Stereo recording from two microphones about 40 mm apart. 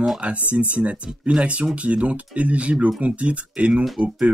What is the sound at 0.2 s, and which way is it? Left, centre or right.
Speech, right.